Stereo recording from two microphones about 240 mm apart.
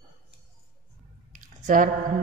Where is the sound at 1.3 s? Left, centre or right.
Right.